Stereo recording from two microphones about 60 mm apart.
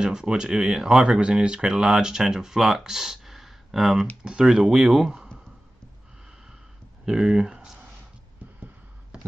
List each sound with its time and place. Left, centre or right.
0.0 s speech: centre
7.1 s speech: centre
8.4 s a sound: right